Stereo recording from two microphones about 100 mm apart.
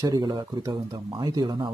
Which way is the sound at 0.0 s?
45° right (ahead or behind).